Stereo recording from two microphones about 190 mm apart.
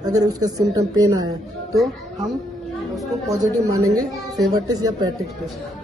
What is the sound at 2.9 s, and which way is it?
A man's voice, 20° right (ahead or behind).